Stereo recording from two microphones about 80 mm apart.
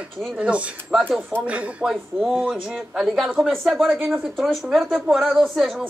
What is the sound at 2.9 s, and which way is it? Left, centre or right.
A woman's voice, centre.